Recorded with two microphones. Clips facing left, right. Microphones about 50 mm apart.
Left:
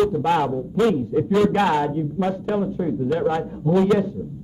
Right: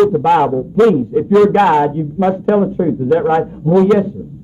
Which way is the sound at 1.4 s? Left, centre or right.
Right.